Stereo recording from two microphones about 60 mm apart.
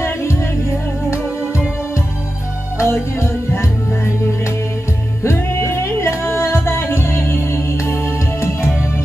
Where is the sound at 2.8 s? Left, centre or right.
Left.